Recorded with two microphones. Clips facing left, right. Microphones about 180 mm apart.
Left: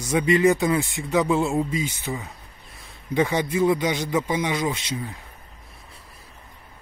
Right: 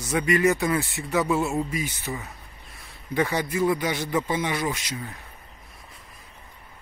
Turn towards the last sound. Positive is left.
turn(degrees=20)  # may be behind; listen again after turning